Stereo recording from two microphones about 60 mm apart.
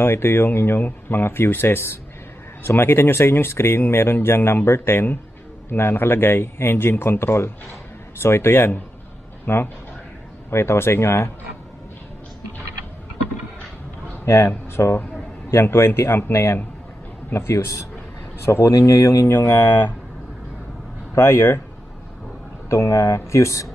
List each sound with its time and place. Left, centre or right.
0.0 s speech: left
14.2 s speech: left
15.6 s speech: left
21.1 s speech: left
22.7 s speech: left